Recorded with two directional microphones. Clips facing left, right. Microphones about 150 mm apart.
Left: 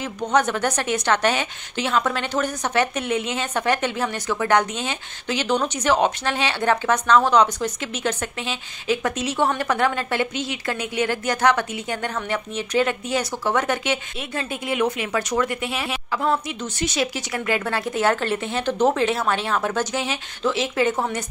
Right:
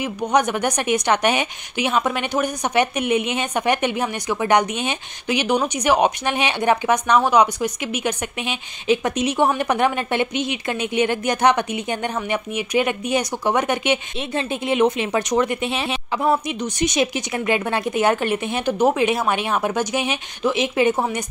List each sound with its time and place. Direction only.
0.0 s a woman's voice: 15° right (ahead or behind)